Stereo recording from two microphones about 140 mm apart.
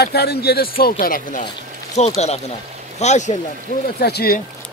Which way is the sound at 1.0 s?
80° left.